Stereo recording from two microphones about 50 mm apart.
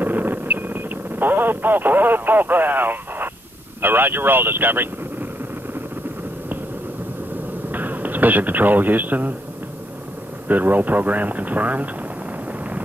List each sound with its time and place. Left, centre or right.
0.0 s radio: right
3.8 s speech: right
7.7 s speech: right
10.5 s speech: right